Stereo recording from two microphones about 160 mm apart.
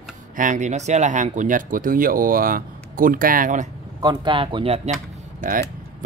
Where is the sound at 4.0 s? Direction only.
25° right (ahead or behind).